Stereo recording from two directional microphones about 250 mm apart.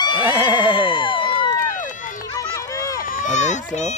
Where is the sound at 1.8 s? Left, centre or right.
Left.